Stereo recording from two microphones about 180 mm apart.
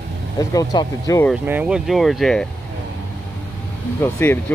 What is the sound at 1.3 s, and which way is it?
Speech, 5° right (ahead or behind).